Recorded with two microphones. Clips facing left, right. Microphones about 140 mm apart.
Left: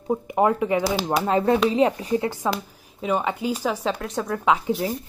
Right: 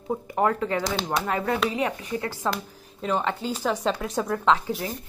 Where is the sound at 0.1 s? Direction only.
15° left (ahead or behind).